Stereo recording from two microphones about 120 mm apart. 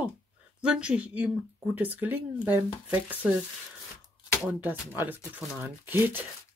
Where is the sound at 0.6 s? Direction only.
5° right (ahead or behind).